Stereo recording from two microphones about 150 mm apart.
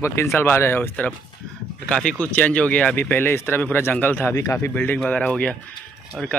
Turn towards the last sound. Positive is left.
turn(degrees=0)  # may be behind; listen again after turning